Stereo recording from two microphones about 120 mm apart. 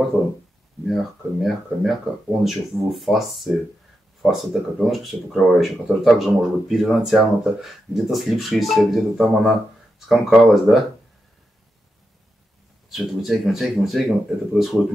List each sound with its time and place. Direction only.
0.8 s speech: centre (ahead or behind)
12.9 s speech: centre (ahead or behind)